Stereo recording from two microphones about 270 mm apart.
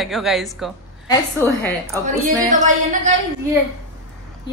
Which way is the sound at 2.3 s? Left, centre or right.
Right.